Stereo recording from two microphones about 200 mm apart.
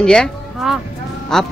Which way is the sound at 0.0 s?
5° left (ahead or behind).